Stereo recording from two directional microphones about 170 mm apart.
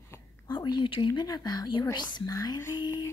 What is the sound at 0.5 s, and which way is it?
Speech, 25° left (ahead or behind).